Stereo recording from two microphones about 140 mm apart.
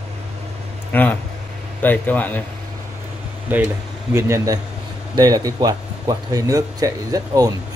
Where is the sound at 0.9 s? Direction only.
15° left (ahead or behind).